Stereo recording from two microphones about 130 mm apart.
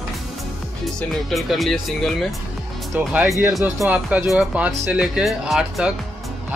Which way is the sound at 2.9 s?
10° right (ahead or behind).